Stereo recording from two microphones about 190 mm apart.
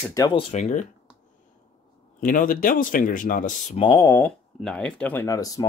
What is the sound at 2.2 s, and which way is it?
Speech, 45° left (ahead or behind).